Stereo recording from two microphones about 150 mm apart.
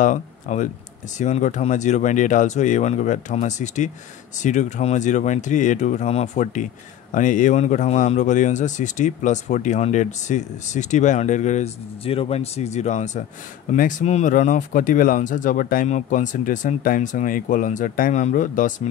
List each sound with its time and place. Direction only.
0.0 s speech: 55° left (ahead or behind)